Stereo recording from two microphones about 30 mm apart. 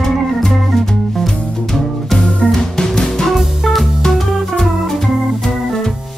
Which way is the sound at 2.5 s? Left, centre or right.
Centre.